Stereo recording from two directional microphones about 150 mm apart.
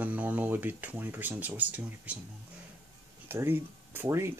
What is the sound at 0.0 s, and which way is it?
Speech, 10° right (ahead or behind).